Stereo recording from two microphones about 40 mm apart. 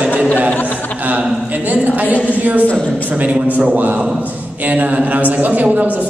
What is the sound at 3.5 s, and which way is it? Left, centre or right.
Speech, right.